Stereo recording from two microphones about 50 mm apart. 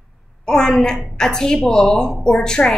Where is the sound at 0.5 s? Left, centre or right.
Centre.